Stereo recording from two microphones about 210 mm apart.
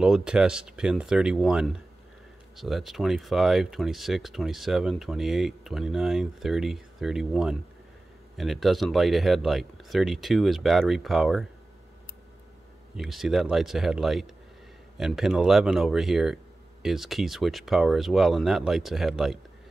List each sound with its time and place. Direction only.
0.0 s speech: 5° right (ahead or behind)
12.9 s speech: centre (ahead or behind)